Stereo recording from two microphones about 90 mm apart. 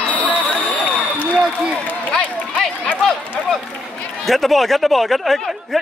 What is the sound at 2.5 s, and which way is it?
Run, 5° left (ahead or behind).